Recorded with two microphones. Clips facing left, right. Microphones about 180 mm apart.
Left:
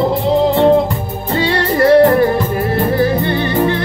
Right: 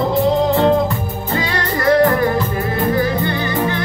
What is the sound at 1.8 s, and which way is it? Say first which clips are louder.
Music: left 5 dB; 30° left (ahead or behind).